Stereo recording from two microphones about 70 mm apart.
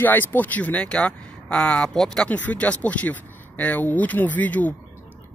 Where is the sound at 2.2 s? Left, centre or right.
Left.